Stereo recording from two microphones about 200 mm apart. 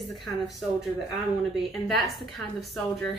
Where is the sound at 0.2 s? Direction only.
Centre (ahead or behind).